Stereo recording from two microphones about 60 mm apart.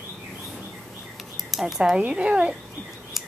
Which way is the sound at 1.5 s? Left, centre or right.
Centre.